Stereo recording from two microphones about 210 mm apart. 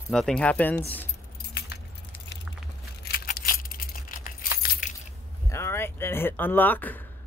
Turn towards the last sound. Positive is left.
turn(degrees=10)  # may be behind; listen again after turning